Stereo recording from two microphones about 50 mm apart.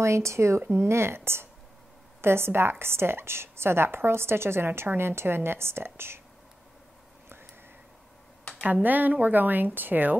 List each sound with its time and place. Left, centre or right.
0.0 s a woman's voice: right
8.8 s a woman's voice: right